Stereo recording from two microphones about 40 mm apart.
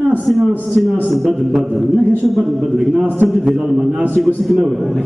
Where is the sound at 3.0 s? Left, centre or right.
Right.